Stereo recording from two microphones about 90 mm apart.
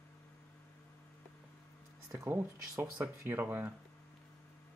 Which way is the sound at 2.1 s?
30° right (ahead or behind).